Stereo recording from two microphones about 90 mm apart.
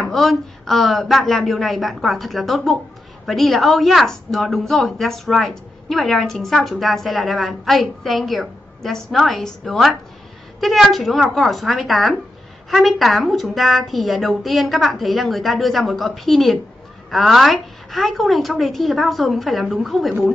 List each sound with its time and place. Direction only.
0.1 s a woman's voice: centre (ahead or behind)